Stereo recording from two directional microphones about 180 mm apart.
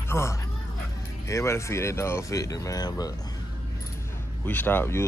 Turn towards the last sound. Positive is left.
turn(degrees=15)  # may be behind; listen again after turning